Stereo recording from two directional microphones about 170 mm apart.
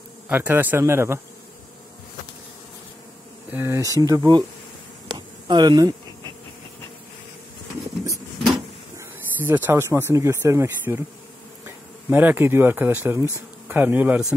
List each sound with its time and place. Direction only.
0.3 s speech: 10° right (ahead or behind)
3.5 s speech: 15° right (ahead or behind)
5.0 s bee: 25° right (ahead or behind)
8.9 s a sound: 15° right (ahead or behind)
10.1 s speech: 15° right (ahead or behind)